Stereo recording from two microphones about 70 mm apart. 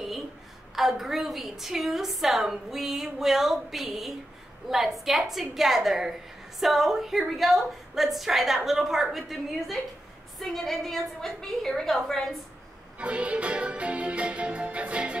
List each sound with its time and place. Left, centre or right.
0.7 s a woman's voice: centre
13.0 s music: centre